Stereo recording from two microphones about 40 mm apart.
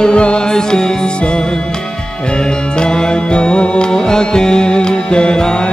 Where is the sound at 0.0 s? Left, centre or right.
Left.